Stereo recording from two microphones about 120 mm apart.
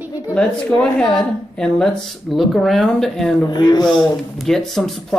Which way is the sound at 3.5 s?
35° left (ahead or behind).